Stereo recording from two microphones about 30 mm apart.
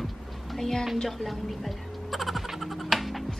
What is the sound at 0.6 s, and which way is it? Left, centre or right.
A woman's voice, centre.